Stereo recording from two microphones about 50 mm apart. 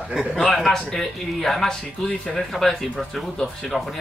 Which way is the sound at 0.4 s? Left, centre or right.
Centre.